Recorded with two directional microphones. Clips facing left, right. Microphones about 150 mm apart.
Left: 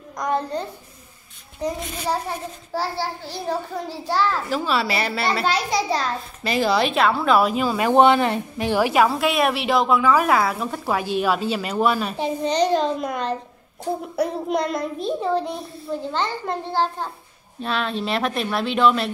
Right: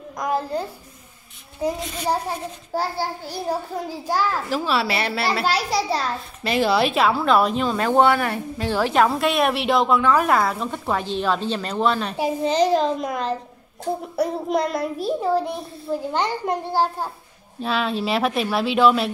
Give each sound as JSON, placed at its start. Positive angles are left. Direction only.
{"t": 0.2, "sound": "a child's voice", "side_deg": -5}
{"t": 12.2, "sound": "a child's voice", "side_deg": -5}